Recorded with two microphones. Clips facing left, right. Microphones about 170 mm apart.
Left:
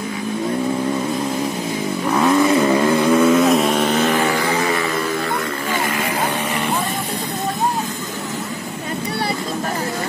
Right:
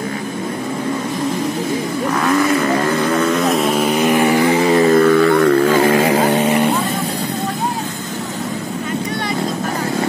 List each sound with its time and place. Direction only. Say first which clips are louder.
2.2 s vehicle: left 2 dB; 15° left (ahead or behind); by 4.5 s 15° right (ahead or behind)
4.6 s music: right 9 dB; 35° right (ahead or behind)
4.9 s music: right 11 dB; 60° right (ahead or behind)